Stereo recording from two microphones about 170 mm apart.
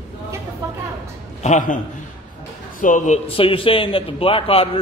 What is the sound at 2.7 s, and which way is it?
Speech, 50° left (ahead or behind).